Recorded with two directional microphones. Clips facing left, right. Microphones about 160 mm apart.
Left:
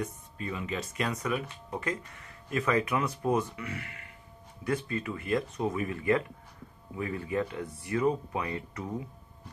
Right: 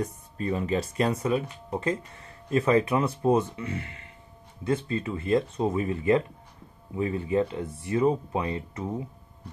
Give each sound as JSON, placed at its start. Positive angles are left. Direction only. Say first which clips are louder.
{"t": 0.0, "sound": "speech", "louder": "right 5 dB", "side_deg": -40}